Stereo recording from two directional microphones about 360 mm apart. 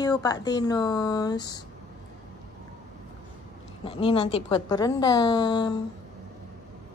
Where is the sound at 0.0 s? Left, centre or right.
Centre.